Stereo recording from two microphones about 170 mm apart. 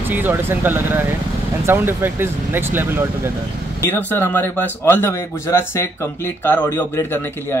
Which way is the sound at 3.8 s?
15° left (ahead or behind).